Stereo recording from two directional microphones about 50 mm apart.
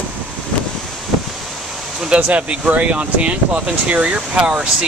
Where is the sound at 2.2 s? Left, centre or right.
Right.